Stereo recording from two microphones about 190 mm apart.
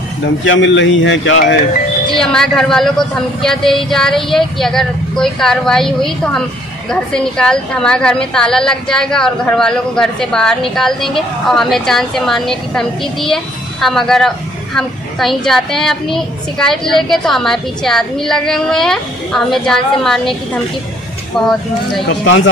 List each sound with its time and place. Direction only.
0.5 s a man's voice: 75° left (ahead or behind)
2.1 s a woman's voice: centre (ahead or behind)